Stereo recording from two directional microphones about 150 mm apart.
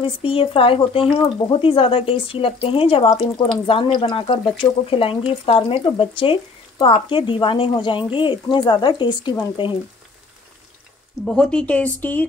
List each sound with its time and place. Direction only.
0.0 s speech: 35° left (ahead or behind)
11.2 s speech: 5° left (ahead or behind)